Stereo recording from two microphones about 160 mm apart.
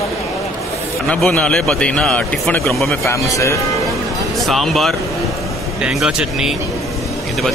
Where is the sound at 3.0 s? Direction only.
20° left (ahead or behind).